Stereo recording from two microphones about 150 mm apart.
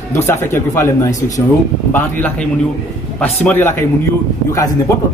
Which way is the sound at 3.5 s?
15° left (ahead or behind).